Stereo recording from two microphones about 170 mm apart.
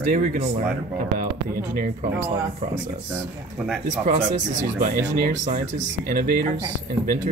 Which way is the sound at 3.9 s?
45° right (ahead or behind).